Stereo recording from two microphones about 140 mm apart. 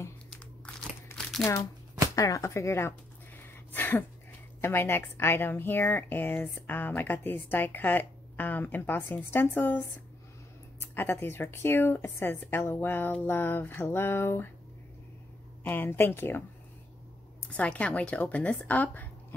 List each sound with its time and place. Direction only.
1.4 s speech: 25° left (ahead or behind)
3.4 s a sound: 15° left (ahead or behind)
4.6 s a woman's voice: 15° left (ahead or behind)
15.6 s a woman's voice: 15° left (ahead or behind)
17.5 s a woman's voice: 10° left (ahead or behind)